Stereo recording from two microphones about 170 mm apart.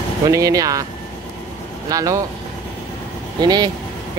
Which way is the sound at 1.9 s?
20° right (ahead or behind).